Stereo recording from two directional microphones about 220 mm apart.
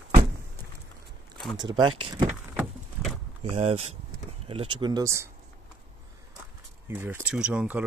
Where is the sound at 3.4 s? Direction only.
30° right (ahead or behind).